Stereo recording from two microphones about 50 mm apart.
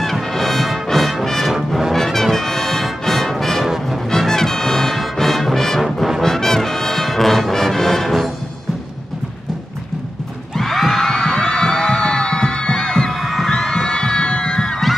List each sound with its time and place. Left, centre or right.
0.0 s brass instrument: centre
1.7 s music: centre
4.1 s brass instrument: centre
6.2 s brass instrument: centre
10.6 s music: centre
13.2 s crowd: centre